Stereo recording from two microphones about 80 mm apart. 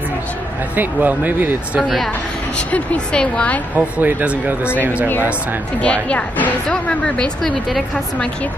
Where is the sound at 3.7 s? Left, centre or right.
Centre.